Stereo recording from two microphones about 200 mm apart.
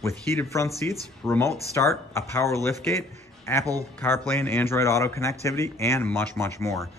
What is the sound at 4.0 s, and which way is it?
Speech, 10° left (ahead or behind).